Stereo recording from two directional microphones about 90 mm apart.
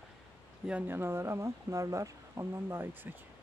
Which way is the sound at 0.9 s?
30° right (ahead or behind).